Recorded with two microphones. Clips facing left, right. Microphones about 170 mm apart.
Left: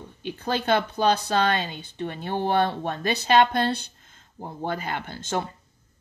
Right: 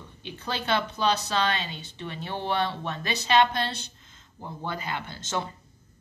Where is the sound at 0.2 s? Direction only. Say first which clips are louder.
Left 6 dB; 50° left (ahead or behind).